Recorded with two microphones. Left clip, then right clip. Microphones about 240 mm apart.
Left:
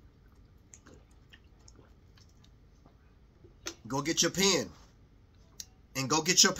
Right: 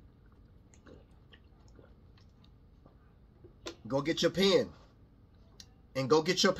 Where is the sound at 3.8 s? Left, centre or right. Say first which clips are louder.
Even; centre.